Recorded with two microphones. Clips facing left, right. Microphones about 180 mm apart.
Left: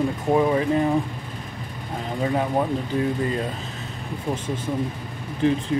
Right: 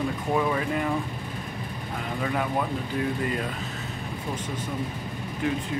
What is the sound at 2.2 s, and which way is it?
Speech, 30° left (ahead or behind).